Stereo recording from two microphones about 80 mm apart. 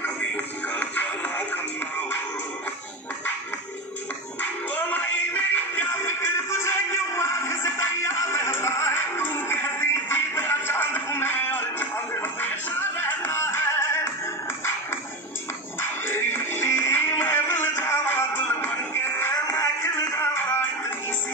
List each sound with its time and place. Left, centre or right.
0.7 s music: left
4.4 s music: left
16.1 s music: left
19.3 s music: left